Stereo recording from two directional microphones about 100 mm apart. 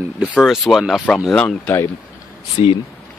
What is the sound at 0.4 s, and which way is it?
Speech, centre (ahead or behind).